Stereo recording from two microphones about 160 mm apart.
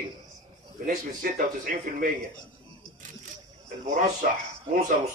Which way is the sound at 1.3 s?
55° right (ahead or behind).